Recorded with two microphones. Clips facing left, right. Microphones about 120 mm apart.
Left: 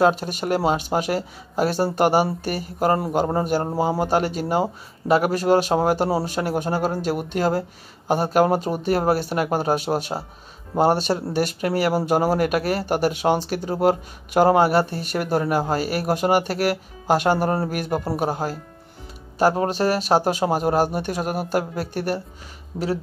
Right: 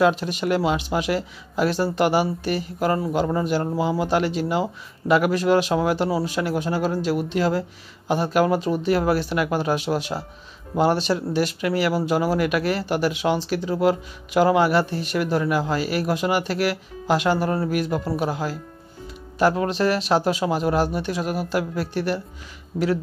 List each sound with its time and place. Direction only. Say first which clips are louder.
0.0 s speech: even; 45° left (ahead or behind)
22.7 s speech: right 3 dB; 25° left (ahead or behind)